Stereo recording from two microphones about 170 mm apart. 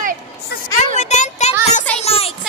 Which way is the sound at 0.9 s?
45° left (ahead or behind).